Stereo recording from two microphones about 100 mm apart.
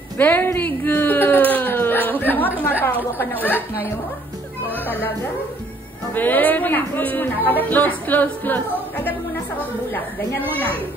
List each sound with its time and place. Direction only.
0.2 s a sound: 20° left (ahead or behind)
2.6 s a woman's voice: 20° left (ahead or behind)
6.1 s speech: 20° left (ahead or behind)
10.4 s speech: 15° left (ahead or behind)